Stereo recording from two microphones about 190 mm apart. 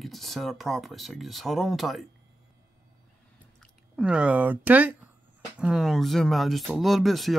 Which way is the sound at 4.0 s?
5° right (ahead or behind).